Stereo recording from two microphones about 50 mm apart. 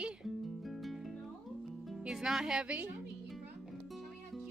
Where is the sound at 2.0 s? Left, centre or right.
Centre.